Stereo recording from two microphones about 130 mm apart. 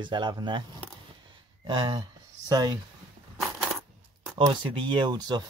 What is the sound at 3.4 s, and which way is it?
Coin, centre (ahead or behind).